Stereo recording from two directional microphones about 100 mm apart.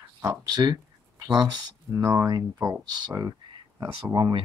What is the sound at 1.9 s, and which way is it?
Speech, 30° right (ahead or behind).